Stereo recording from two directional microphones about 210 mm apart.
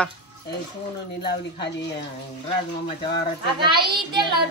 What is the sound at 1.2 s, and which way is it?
Speech, 55° left (ahead or behind).